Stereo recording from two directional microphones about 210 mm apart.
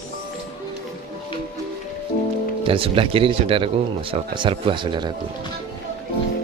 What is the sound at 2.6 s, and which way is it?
Speech, 25° right (ahead or behind).